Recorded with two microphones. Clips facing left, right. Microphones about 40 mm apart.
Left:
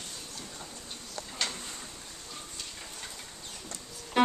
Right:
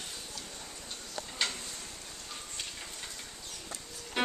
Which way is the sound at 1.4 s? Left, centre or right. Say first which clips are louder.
Right 1 dB; centre.